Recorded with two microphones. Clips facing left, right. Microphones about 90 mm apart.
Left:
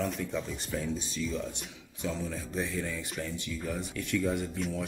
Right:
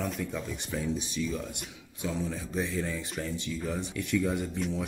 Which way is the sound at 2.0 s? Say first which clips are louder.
Right 2 dB; 15° right (ahead or behind).